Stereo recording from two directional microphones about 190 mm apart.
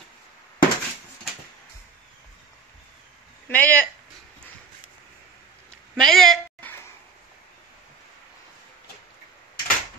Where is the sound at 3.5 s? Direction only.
10° left (ahead or behind).